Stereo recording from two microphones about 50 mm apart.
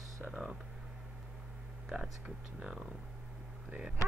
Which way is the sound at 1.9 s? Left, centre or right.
Right.